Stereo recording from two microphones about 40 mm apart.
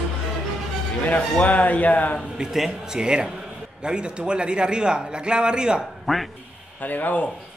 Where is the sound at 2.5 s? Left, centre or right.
Centre.